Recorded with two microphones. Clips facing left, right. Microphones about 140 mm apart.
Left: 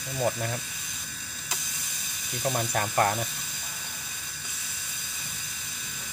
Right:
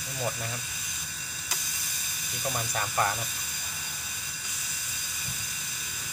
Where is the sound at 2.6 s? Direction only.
55° left (ahead or behind).